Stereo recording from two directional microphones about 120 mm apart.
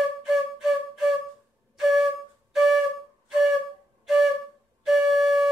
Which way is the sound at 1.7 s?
Centre (ahead or behind).